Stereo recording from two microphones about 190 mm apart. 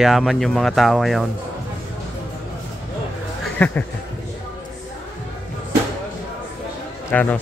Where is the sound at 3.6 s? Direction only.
10° left (ahead or behind).